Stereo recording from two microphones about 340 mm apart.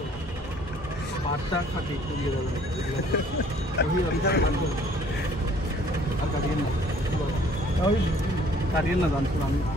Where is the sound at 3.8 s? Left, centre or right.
Left.